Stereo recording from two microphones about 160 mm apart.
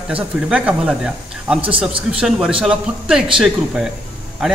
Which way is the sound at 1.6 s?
35° right (ahead or behind).